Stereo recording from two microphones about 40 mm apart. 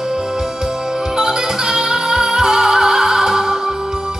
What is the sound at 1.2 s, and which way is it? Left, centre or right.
Music, centre.